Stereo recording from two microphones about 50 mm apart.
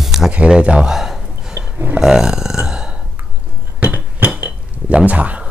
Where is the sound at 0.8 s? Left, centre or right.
Centre.